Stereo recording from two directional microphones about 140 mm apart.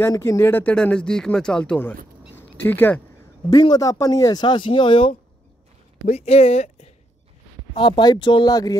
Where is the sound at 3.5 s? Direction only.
30° left (ahead or behind); by 6.7 s 50° left (ahead or behind).